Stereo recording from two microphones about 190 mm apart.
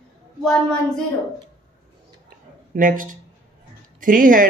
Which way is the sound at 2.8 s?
45° right (ahead or behind).